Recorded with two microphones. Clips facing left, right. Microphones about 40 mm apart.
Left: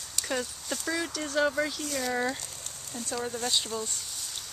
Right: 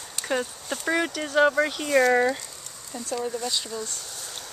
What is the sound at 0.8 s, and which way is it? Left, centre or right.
Speech, right.